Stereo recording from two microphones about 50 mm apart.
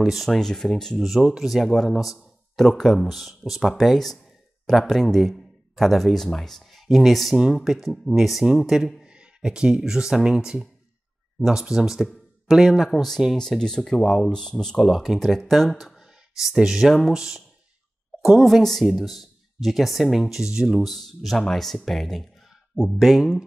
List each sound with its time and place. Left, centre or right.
0.1 s speech: centre
1.2 s speech: centre
1.7 s speech: centre
7.9 s speech: centre
8.2 s speech: centre
9.0 s speech: centre
12.9 s speech: centre
14.8 s speech: centre
16.0 s a sound: centre
17.1 s speech: centre
22.9 s speech: centre